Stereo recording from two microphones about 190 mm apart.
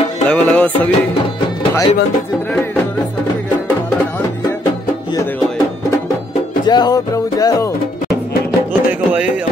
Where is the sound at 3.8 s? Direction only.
10° left (ahead or behind).